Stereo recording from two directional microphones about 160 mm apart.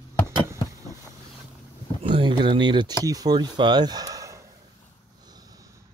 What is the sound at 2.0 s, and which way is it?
Speech, 35° right (ahead or behind).